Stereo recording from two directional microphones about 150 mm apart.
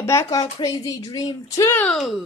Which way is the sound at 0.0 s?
20° left (ahead or behind).